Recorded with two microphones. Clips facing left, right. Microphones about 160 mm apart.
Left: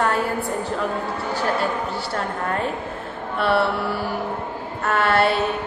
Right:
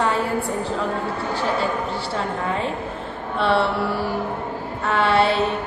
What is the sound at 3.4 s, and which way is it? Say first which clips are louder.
Speech: even; 5° left (ahead or behind).